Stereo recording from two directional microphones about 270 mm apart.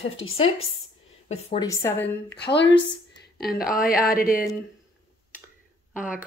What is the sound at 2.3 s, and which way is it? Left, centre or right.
Speech, left.